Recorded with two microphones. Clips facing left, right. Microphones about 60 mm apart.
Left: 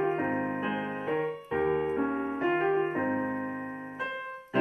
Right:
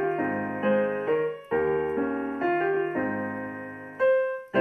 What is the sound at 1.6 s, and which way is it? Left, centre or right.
Keyboard, right.